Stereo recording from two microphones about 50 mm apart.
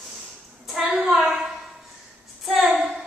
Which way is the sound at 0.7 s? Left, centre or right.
Right.